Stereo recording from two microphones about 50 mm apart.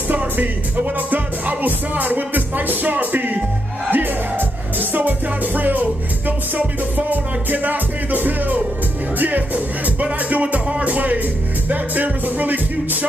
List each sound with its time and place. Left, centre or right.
0.1 s music: right